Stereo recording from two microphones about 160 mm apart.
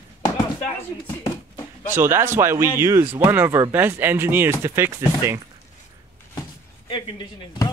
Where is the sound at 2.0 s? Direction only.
15° right (ahead or behind).